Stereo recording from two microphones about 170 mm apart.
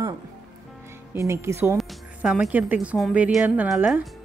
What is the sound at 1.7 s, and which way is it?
A woman's voice, centre (ahead or behind).